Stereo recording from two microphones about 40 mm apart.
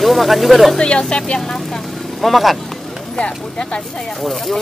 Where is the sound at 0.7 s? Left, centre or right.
Left.